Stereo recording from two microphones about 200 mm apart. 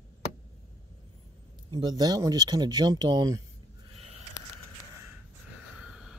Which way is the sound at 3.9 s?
30° right (ahead or behind).